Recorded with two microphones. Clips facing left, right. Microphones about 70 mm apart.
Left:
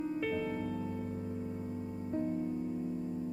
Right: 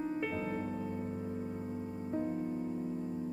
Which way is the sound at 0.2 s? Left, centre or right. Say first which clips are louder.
Left 1 dB; centre.